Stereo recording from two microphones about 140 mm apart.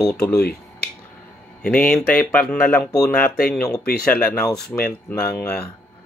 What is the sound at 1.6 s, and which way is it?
Speech, 10° left (ahead or behind).